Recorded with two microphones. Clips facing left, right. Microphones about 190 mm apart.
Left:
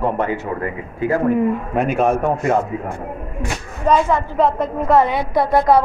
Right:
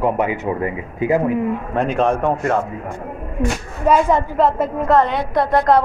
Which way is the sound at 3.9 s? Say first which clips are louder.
Right 1 dB; 10° right (ahead or behind).